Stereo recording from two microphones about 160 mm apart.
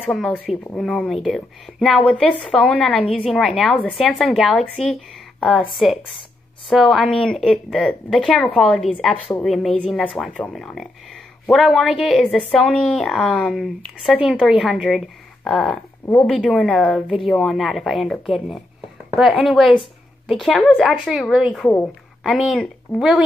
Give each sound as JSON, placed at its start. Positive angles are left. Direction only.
{"t": 0.1, "sound": "speech", "side_deg": 0}